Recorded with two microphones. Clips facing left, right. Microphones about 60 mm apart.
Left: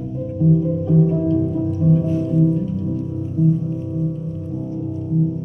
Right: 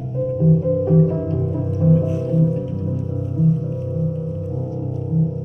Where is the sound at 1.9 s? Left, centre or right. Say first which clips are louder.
Right 1 dB; centre.